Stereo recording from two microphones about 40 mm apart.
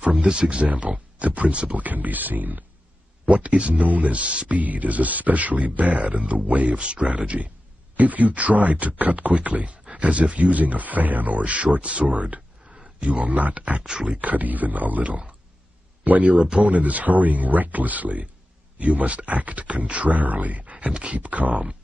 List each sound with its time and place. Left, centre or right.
0.0 s speech: right
0.7 s speech: right
1.8 s speech: right
3.3 s speech: right
4.6 s speech: right